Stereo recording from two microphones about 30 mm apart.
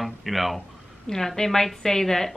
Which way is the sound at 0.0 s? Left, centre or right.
Centre.